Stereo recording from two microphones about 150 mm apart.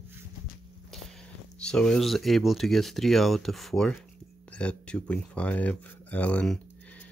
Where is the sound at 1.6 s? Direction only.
5° left (ahead or behind).